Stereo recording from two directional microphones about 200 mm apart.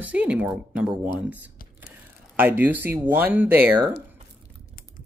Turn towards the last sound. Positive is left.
turn(degrees=-10)  # may be behind; listen again after turning